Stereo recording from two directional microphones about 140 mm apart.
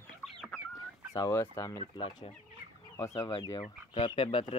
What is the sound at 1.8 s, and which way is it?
Speech, 40° left (ahead or behind).